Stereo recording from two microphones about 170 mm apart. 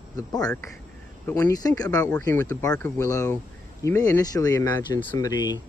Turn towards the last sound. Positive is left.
turn(degrees=25)  # may be behind; listen again after turning